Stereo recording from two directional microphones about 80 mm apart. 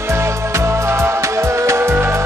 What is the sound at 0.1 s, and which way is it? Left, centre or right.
Music, right.